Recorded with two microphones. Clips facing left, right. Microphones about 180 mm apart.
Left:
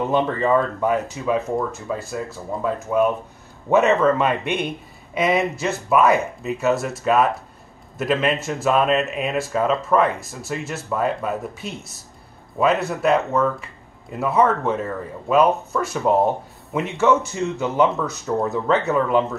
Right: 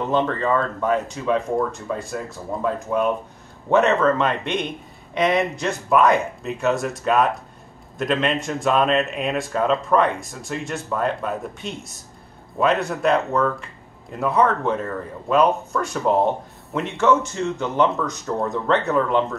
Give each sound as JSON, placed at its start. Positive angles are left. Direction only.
{"t": 0.1, "sound": "speech", "side_deg": 10}